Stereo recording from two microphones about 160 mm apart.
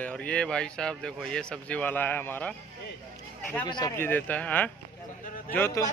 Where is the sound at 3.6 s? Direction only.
25° left (ahead or behind).